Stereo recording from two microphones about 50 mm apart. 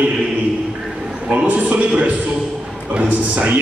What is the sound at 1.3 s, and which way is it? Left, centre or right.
A man's voice, right.